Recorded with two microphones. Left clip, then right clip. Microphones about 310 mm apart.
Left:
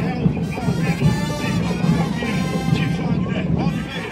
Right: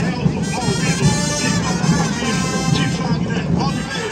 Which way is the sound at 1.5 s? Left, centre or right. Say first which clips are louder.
Right 3 dB; right.